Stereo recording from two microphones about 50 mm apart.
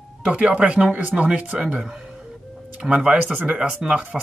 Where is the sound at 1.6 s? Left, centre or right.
Centre.